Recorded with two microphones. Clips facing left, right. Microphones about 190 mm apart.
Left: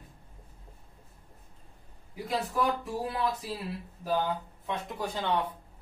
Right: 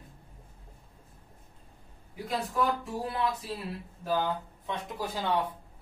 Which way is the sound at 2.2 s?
Centre (ahead or behind).